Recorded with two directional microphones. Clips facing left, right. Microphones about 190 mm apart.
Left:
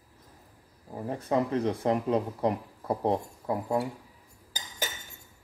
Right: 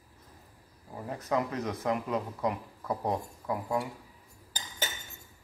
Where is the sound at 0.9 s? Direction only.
30° left (ahead or behind).